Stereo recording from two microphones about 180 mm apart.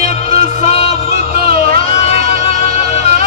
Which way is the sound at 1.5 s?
55° right (ahead or behind).